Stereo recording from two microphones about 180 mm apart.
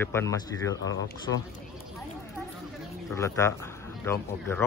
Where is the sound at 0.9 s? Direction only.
90° left.